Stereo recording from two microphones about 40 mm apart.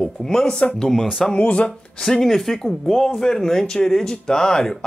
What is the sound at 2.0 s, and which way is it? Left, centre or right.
Speech, centre.